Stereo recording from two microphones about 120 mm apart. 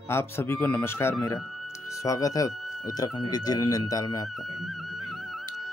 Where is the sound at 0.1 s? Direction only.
20° left (ahead or behind).